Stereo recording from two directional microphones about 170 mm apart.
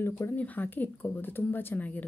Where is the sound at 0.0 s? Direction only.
15° left (ahead or behind).